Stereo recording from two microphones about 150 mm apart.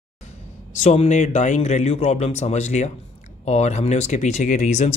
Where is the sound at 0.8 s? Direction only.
45° left (ahead or behind).